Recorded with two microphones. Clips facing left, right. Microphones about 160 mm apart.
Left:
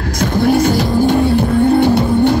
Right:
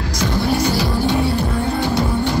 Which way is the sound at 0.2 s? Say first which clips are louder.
Left 6 dB; 50° left (ahead or behind).